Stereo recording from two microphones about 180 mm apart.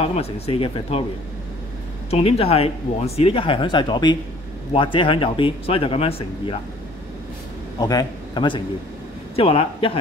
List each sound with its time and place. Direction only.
0.0 s speech: 35° left (ahead or behind)
2.0 s speech: 35° left (ahead or behind)
7.8 s speech: 20° left (ahead or behind)